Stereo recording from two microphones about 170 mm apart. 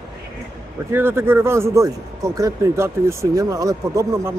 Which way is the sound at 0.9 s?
15° right (ahead or behind).